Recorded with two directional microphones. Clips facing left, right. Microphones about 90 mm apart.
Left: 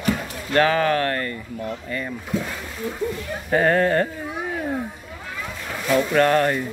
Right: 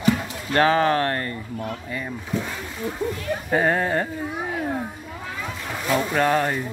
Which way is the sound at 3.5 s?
10° right (ahead or behind).